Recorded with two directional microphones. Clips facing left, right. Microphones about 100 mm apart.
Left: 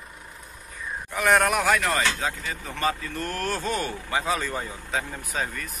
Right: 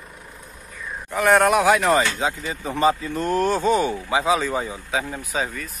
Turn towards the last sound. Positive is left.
turn(degrees=-10)  # may be behind; listen again after turning